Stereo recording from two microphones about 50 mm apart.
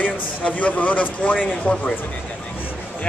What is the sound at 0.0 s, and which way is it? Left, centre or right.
A man's voice, left.